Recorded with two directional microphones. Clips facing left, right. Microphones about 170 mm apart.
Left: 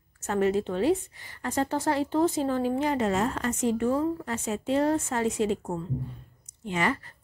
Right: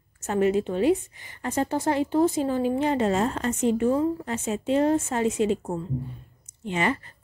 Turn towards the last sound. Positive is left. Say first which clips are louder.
# right 2 dB
turn(degrees=-20)  # may be behind; listen again after turning